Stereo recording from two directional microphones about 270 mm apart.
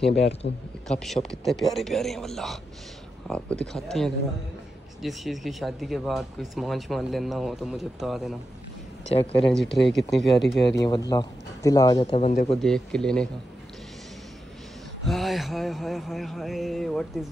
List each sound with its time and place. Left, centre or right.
0.0 s a man's voice: left
0.8 s speech: centre
9.5 s speech: centre
10.8 s speech: centre
12.4 s speech: centre
15.0 s speech: centre